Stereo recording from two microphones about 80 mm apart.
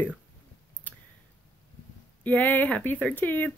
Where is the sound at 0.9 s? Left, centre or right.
Left.